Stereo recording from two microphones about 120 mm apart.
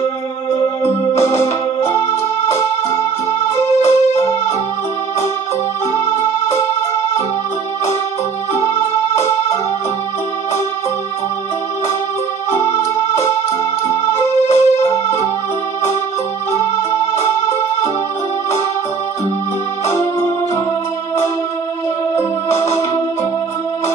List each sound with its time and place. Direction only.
0.8 s organ: 20° left (ahead or behind)
3.8 s keyboard: 25° left (ahead or behind)
8.5 s keyboard: 20° left (ahead or behind)
12.4 s music: 20° left (ahead or behind)
19.9 s keyboard: 25° left (ahead or behind)
22.1 s music: 20° left (ahead or behind)